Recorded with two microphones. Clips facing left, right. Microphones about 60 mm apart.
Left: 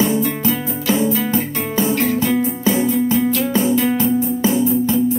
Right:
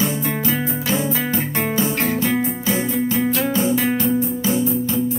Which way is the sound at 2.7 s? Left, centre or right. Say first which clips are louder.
Left 3 dB; right.